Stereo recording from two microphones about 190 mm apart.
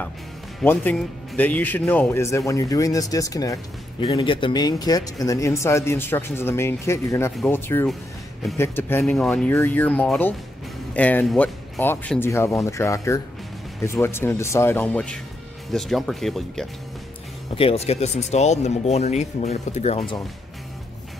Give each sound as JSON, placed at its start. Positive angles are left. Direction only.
{"t": 0.6, "sound": "speech", "side_deg": 5}
{"t": 17.6, "sound": "speech", "side_deg": 30}